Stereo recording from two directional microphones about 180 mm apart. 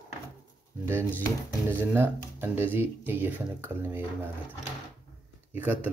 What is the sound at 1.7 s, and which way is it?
Speech, 10° right (ahead or behind).